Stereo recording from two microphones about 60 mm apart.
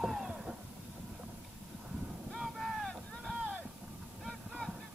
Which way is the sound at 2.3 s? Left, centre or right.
Centre.